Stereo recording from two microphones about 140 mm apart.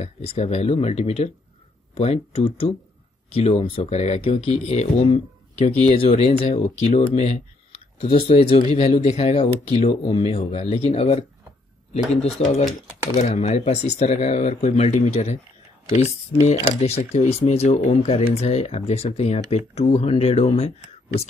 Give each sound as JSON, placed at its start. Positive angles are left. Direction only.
{"t": 0.0, "sound": "speech", "side_deg": 45}